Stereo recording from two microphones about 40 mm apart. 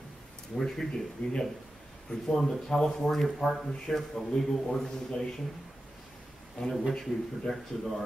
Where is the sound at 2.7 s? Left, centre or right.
Centre.